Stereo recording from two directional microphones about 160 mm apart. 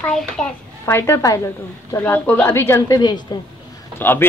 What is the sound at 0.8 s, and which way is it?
Speech, 15° left (ahead or behind).